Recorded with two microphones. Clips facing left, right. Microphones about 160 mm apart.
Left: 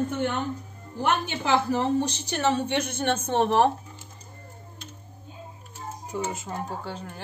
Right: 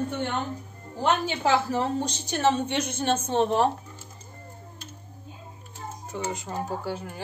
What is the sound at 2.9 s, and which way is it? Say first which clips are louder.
Speech: right 2 dB; 60° left (ahead or behind).